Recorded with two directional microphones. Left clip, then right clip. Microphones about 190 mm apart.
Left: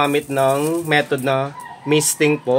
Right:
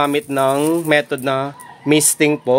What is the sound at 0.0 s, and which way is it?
Speech, 55° right (ahead or behind).